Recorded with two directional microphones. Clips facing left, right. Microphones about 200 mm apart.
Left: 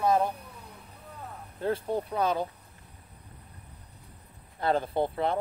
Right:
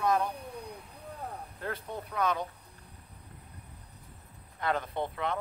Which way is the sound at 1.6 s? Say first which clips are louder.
Left 10 dB; 30° left (ahead or behind).